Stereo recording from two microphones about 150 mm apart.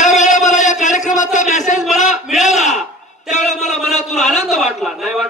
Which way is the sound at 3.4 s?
50° left (ahead or behind).